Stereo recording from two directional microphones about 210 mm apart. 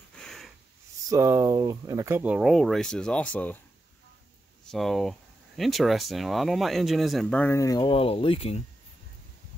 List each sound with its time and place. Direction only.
0.1 s a sound: 5° left (ahead or behind)
1.0 s speech: 15° right (ahead or behind); by 3.5 s 5° left (ahead or behind)
4.6 s speech: centre (ahead or behind); by 8.6 s 30° left (ahead or behind)